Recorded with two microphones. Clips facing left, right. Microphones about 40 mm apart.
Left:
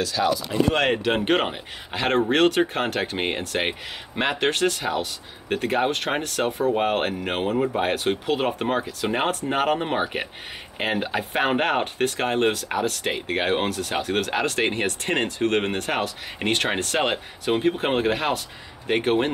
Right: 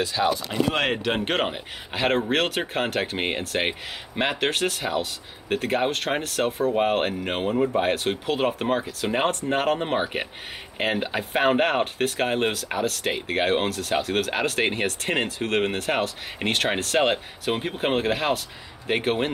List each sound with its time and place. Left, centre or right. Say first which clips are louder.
0.0 s speech: even; right
0.7 s speech: left 3 dB; centre